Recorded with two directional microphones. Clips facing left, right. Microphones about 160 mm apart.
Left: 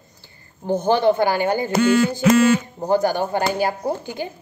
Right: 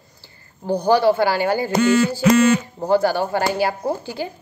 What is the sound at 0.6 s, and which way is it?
A woman's voice, 20° left (ahead or behind).